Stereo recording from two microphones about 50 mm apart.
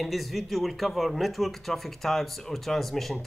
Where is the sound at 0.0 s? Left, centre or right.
Centre.